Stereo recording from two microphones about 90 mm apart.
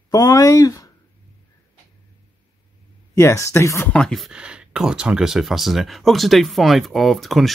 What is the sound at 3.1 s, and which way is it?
Speech, 35° left (ahead or behind).